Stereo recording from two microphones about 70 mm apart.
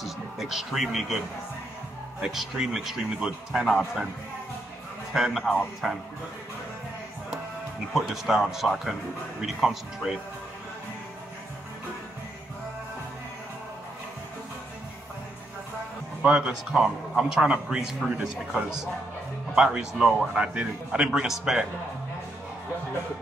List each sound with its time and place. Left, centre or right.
0.0 s speech: centre
2.2 s speech: centre
5.1 s speech: centre
7.9 s speech: centre
16.2 s speech: centre